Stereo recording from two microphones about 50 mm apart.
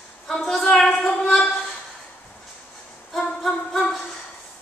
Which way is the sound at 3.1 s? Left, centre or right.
Centre.